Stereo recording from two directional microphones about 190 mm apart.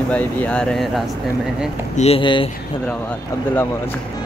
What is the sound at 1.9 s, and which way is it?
Speech, 35° left (ahead or behind).